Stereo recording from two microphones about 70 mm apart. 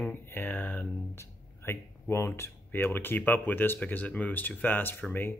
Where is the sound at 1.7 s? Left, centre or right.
Left.